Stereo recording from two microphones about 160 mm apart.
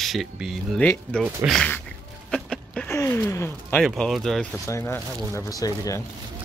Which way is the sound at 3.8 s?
Centre (ahead or behind).